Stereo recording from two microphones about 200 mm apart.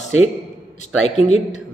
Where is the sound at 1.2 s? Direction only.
35° left (ahead or behind).